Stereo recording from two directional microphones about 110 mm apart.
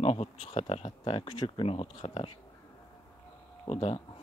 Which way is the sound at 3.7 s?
65° left (ahead or behind).